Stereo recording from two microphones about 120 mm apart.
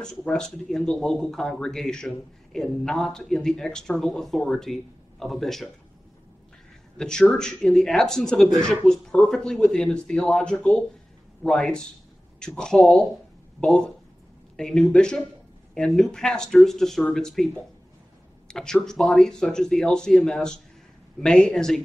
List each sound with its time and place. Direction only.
0.0 s speech: 5° left (ahead or behind)
7.0 s speech: 5° left (ahead or behind)
18.5 s speech: 5° left (ahead or behind)